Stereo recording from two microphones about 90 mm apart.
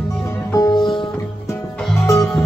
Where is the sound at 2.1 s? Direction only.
40° left (ahead or behind).